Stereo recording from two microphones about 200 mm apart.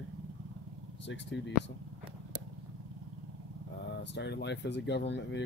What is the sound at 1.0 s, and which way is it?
Speech, 65° left (ahead or behind).